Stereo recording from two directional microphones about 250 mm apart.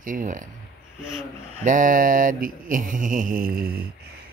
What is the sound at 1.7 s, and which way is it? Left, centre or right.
Speech, right.